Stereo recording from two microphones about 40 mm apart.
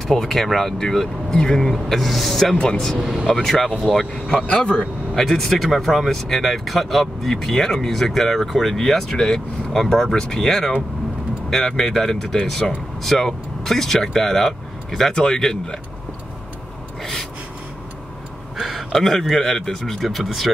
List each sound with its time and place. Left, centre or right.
0.0 s speech: centre
2.5 s speech: left
3.0 s speech: centre
3.4 s speech: centre
4.5 s speech: left
5.1 s speech: centre
15.1 s speech: centre
17.0 s gasp: centre
18.6 s a sound: centre
19.1 s speech: centre